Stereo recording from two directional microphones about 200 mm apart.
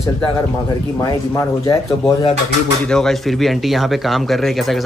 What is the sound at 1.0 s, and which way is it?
Speech, 15° left (ahead or behind).